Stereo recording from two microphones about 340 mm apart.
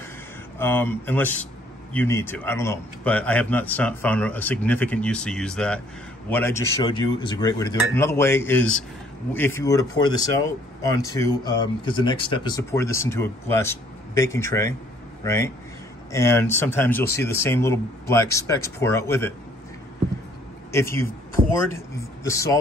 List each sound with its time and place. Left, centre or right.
0.6 s a man's voice: centre
20.7 s speech: centre
21.4 s speech: right
21.7 s speech: centre